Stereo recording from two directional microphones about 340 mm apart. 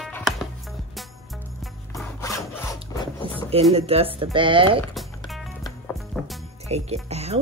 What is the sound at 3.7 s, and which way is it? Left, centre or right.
Speech, centre.